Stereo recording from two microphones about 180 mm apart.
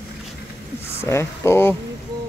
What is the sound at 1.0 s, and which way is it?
Speech, 15° left (ahead or behind).